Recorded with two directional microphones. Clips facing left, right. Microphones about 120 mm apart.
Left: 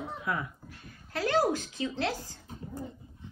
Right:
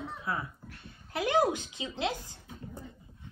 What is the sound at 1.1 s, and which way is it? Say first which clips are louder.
Speech: even; 15° right (ahead or behind).